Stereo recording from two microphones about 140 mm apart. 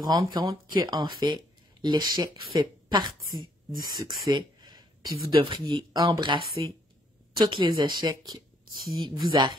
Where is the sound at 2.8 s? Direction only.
30° right (ahead or behind).